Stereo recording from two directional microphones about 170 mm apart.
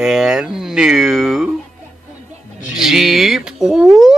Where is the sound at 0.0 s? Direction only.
5° right (ahead or behind).